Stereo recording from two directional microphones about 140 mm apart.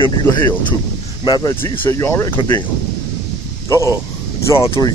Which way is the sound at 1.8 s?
20° left (ahead or behind).